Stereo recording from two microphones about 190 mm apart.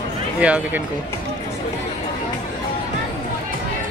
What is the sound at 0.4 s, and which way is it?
Speech, 5° right (ahead or behind).